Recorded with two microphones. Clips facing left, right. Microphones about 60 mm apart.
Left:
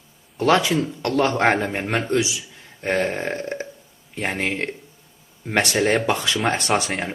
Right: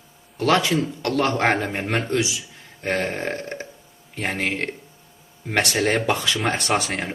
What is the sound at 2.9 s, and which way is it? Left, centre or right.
Speech, centre.